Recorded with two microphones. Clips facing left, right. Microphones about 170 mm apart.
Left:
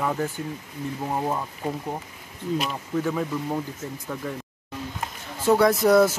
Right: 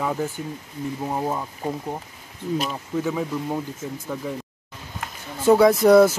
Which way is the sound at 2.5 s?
5° right (ahead or behind).